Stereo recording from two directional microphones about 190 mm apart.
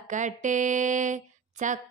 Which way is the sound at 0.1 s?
40° right (ahead or behind).